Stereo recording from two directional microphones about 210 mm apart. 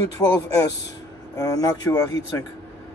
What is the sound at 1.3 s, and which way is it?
Speech, 15° left (ahead or behind).